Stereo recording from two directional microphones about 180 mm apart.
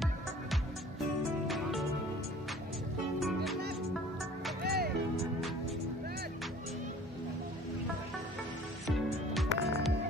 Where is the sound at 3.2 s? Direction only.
Centre (ahead or behind).